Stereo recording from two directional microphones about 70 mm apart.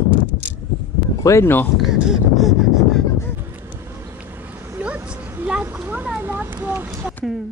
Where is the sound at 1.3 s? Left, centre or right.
Left.